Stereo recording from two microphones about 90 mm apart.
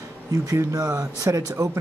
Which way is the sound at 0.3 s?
35° right (ahead or behind).